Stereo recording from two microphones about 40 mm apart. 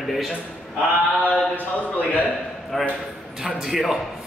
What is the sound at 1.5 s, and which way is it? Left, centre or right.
Speech, left.